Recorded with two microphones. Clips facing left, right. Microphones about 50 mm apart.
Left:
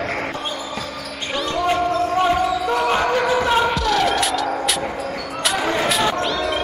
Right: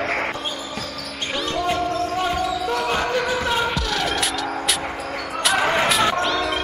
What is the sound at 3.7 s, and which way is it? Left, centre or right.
Music, centre.